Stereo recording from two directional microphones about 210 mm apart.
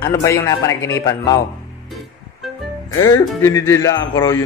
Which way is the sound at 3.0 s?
15° left (ahead or behind).